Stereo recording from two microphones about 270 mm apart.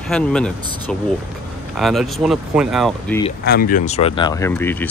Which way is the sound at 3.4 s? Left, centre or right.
Left.